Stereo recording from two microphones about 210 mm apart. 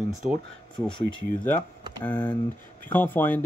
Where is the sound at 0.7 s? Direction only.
25° left (ahead or behind).